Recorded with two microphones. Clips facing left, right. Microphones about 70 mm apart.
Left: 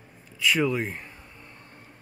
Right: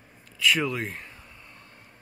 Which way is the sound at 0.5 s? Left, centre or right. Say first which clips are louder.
Left 2 dB; centre.